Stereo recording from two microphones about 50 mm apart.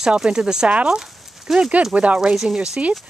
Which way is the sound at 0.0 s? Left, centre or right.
Centre.